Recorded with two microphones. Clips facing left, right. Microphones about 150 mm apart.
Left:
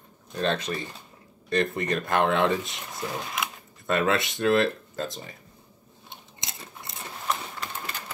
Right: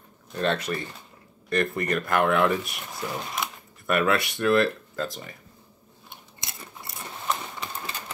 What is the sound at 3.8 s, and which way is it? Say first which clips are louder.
Speech: right 1 dB; 25° left (ahead or behind).